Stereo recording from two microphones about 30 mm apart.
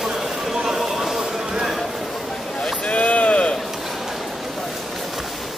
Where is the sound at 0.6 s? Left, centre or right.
Centre.